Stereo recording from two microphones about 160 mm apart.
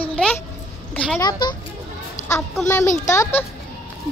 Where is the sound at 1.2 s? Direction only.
30° left (ahead or behind).